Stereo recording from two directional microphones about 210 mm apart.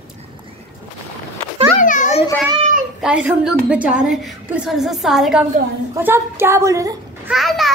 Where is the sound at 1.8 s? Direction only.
35° left (ahead or behind).